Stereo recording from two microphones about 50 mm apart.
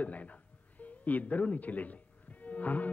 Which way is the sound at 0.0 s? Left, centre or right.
Left.